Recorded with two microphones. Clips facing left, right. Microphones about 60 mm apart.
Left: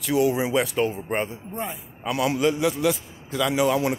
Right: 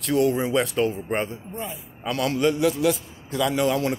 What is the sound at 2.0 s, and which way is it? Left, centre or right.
A man's voice, centre.